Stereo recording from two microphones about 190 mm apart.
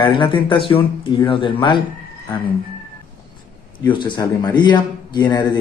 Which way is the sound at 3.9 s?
25° left (ahead or behind).